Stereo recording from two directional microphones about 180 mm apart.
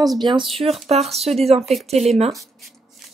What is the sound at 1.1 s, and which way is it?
Speech, 35° right (ahead or behind).